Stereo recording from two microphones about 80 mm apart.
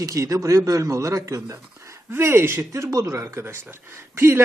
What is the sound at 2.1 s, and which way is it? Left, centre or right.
Speech, right.